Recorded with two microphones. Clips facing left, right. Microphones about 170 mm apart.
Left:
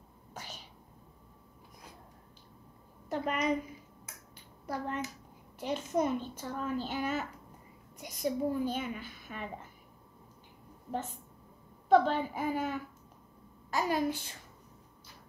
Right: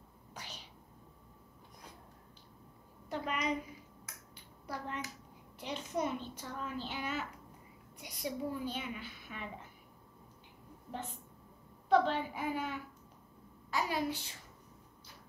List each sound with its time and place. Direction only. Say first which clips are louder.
0.3 s cat: left 3 dB; 45° left (ahead or behind)
3.1 s a sound: left 5 dB; 45° left (ahead or behind)
4.6 s a child's voice: left 5 dB; 45° left (ahead or behind)
11.9 s a child's voice: left 4 dB; 45° left (ahead or behind)